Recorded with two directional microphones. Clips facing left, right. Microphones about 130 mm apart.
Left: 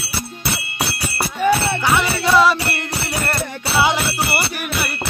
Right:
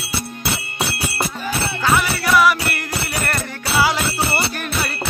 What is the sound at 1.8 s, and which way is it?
Jingle bell, 20° left (ahead or behind).